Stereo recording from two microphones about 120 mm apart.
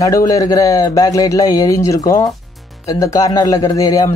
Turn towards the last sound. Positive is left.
turn(degrees=30)  # may be behind; listen again after turning